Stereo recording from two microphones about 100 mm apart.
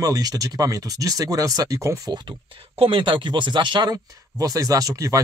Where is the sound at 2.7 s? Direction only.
60° right (ahead or behind).